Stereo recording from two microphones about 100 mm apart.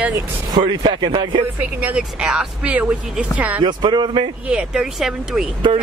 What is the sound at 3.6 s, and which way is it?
Speech, 50° right (ahead or behind).